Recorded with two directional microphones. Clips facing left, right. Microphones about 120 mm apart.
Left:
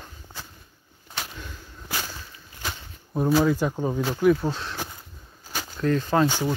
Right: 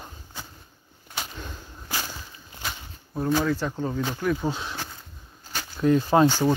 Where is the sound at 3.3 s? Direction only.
10° left (ahead or behind).